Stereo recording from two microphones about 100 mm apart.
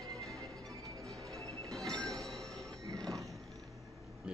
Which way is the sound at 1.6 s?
5° left (ahead or behind).